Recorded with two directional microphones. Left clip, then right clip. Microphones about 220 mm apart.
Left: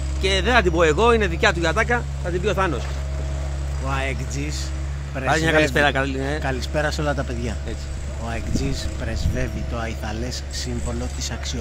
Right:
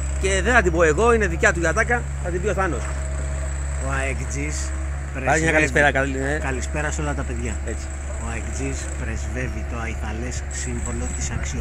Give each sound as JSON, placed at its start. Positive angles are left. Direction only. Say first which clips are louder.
{"t": 0.2, "sound": "speech", "louder": "even", "side_deg": 0}
{"t": 1.9, "sound": "speech", "louder": "even", "side_deg": 10}
{"t": 3.9, "sound": "speech", "louder": "even", "side_deg": 15}
{"t": 5.2, "sound": "a man's voice", "louder": "even", "side_deg": -10}
{"t": 6.4, "sound": "speech", "louder": "left 3 dB", "side_deg": 20}